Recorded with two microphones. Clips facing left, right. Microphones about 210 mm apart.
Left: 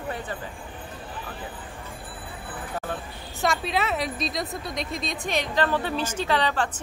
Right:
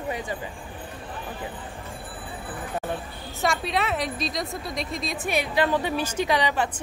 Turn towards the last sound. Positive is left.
turn(degrees=-15)  # may be behind; listen again after turning